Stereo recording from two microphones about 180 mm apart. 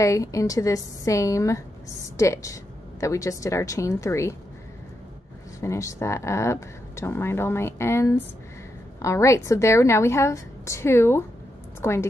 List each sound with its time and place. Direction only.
0.0 s speech: 15° left (ahead or behind)
5.6 s a woman's voice: 15° left (ahead or behind)